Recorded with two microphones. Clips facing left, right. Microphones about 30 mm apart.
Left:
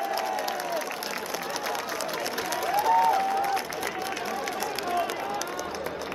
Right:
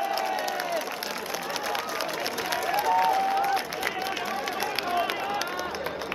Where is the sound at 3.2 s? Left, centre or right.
Right.